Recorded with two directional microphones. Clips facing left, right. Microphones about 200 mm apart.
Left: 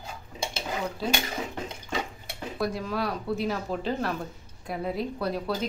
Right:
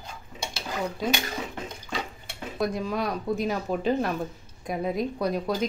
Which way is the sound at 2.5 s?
20° right (ahead or behind).